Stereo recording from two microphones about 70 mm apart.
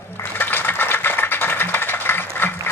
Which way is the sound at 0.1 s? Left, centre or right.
Left.